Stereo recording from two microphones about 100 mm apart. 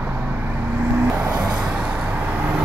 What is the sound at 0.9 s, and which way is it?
Vehicle, 15° right (ahead or behind).